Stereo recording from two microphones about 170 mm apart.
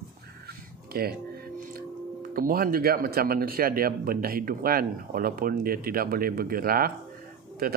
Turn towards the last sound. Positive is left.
turn(degrees=-60)  # may be behind; listen again after turning